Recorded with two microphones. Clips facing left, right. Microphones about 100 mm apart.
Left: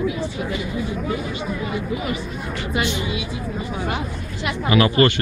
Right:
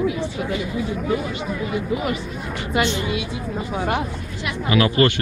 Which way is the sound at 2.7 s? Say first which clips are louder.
Right 3 dB; 65° right (ahead or behind).